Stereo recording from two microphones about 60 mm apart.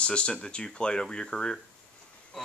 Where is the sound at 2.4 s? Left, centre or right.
Centre.